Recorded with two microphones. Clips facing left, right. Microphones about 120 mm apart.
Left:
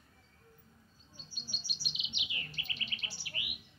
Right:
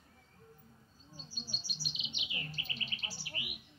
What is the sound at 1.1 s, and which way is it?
Chirp, 35° right (ahead or behind).